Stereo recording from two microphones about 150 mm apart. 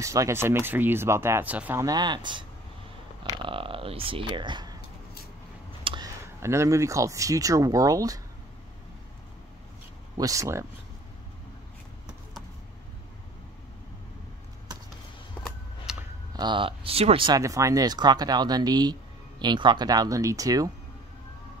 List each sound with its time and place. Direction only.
0.0 s speech: 20° right (ahead or behind)
1.8 s speech: 25° right (ahead or behind)
3.4 s speech: 35° right (ahead or behind)
5.9 s a sound: 35° right (ahead or behind)
6.2 s speech: 20° right (ahead or behind)
10.1 s speech: 25° right (ahead or behind)
15.4 s a sound: 5° right (ahead or behind)
16.3 s speech: 35° right (ahead or behind)
17.3 s speech: 20° right (ahead or behind)